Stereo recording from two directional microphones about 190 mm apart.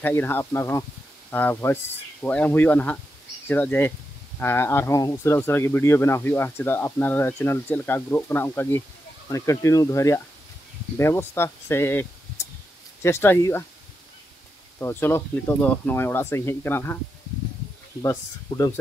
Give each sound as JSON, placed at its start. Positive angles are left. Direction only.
{"t": 0.0, "sound": "speech", "side_deg": 10}
{"t": 14.8, "sound": "speech", "side_deg": 15}